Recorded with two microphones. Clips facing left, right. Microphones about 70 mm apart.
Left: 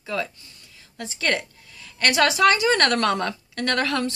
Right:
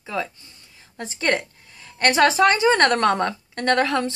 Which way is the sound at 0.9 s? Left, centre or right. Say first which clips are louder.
Right 2 dB; right.